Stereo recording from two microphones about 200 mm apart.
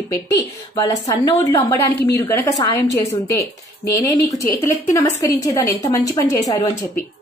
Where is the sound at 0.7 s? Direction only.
15° left (ahead or behind).